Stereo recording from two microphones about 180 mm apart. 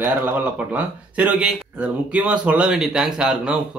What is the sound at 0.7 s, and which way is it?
Speech, 10° right (ahead or behind).